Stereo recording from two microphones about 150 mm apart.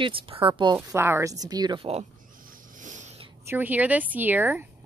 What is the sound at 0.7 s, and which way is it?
A woman's voice, 15° right (ahead or behind).